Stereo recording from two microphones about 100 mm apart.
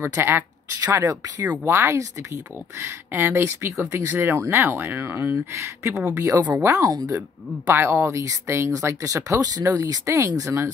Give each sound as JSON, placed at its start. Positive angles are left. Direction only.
{"t": 0.0, "sound": "speech", "side_deg": -25}
{"t": 0.7, "sound": "speech", "side_deg": -35}
{"t": 1.6, "sound": "speech", "side_deg": -25}
{"t": 6.9, "sound": "speech", "side_deg": -40}
{"t": 7.2, "sound": "speech", "side_deg": -25}